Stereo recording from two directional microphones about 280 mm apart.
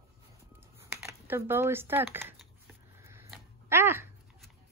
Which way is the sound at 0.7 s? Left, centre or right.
Centre.